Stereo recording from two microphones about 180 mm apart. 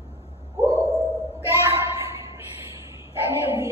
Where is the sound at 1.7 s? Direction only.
35° left (ahead or behind).